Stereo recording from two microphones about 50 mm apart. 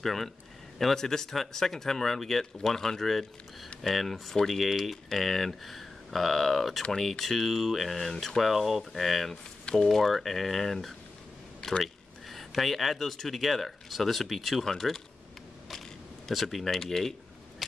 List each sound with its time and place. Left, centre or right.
0.0 s speech: centre
16.3 s speech: centre